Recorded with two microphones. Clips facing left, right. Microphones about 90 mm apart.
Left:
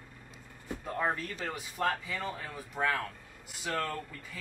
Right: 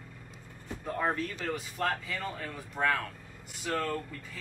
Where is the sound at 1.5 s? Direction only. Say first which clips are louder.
Left 1 dB; 5° left (ahead or behind).